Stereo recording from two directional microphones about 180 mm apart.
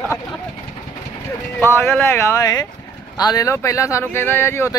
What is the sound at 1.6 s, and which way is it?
Speech, 15° left (ahead or behind).